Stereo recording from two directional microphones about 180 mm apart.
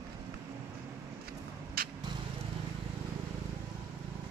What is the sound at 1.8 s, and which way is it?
Vehicle, 55° right (ahead or behind).